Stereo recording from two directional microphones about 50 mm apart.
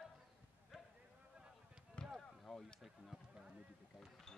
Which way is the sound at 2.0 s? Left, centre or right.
Centre.